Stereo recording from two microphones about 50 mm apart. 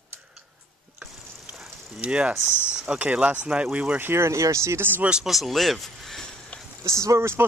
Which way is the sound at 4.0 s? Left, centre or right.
Right.